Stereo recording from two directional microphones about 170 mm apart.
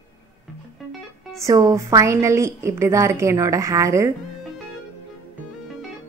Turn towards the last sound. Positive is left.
turn(degrees=-15)  # may be behind; listen again after turning